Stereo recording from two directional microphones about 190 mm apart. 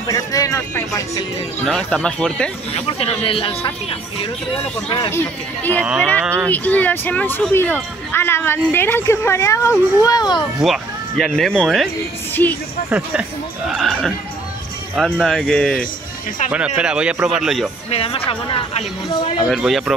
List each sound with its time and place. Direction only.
0.0 s speech: 20° left (ahead or behind)
1.7 s speech: 5° left (ahead or behind)
2.7 s speech: 30° left (ahead or behind)
4.8 s speech: 25° left (ahead or behind)
5.1 s speech: 10° left (ahead or behind)
6.2 s speech: 15° right (ahead or behind)
6.5 s speech: 10° left (ahead or behind)
10.6 s speech: centre (ahead or behind)
12.9 s speech: 5° right (ahead or behind)
17.8 s speech: 30° left (ahead or behind)
19.5 s speech: centre (ahead or behind)